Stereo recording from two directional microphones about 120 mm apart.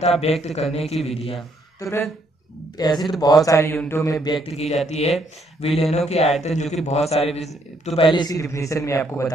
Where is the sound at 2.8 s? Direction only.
35° left (ahead or behind).